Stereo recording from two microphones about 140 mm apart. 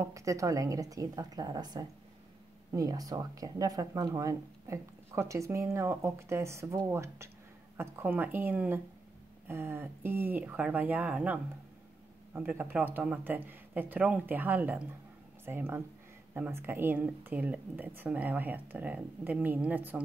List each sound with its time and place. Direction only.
0.0 s speech: 20° right (ahead or behind)